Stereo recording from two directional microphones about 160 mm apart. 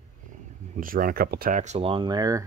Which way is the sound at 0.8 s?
60° right (ahead or behind).